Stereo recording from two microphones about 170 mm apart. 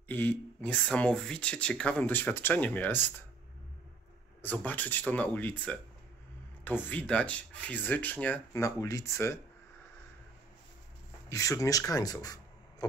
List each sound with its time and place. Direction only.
0.1 s speech: 10° left (ahead or behind)
4.4 s speech: 10° left (ahead or behind)
11.2 s speech: 20° left (ahead or behind)